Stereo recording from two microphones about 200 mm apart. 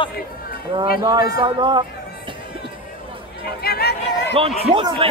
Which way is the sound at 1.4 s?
25° right (ahead or behind).